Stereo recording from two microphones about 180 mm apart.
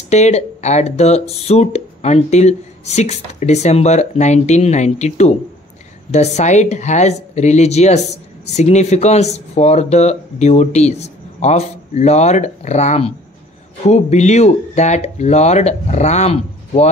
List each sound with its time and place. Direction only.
0.1 s speech: 40° left (ahead or behind)